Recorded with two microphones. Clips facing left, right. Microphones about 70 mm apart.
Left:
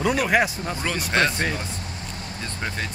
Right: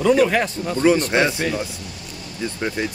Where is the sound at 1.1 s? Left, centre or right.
Centre.